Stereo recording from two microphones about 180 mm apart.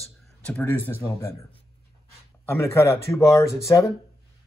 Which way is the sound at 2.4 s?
15° left (ahead or behind).